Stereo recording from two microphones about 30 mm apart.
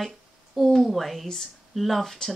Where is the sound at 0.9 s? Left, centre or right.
Centre.